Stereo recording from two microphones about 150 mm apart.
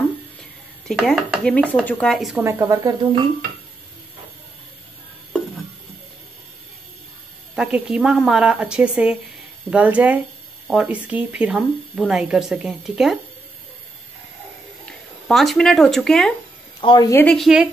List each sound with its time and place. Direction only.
0.8 s speech: centre (ahead or behind)
2.4 s speech: 20° right (ahead or behind)
7.5 s speech: 5° right (ahead or behind)
14.9 s speech: centre (ahead or behind)
16.8 s a woman's voice: 30° left (ahead or behind)
17.1 s a woman's voice: 10° left (ahead or behind)
17.4 s speech: 5° right (ahead or behind)